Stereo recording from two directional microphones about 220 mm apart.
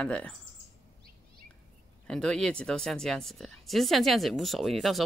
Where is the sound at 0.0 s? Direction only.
5° left (ahead or behind).